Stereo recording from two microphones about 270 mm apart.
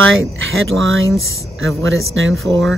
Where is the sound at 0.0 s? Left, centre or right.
Right.